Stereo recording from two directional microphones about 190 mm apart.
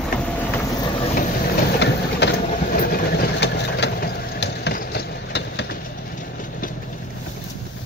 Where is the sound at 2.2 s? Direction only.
65° left (ahead or behind).